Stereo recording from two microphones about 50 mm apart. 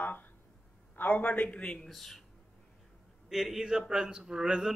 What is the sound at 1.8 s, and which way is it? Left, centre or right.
Speech, centre.